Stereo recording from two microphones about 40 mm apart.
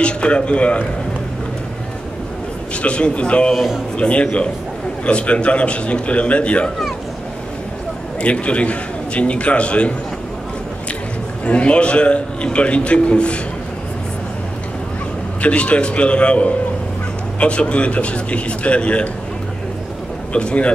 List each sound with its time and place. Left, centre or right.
0.0 s a man's voice: left
2.7 s a man's voice: left
3.5 s a man's voice: centre
4.0 s a man's voice: left
8.2 s a man's voice: left
11.4 s a man's voice: left
15.4 s a man's voice: left
20.3 s a man's voice: left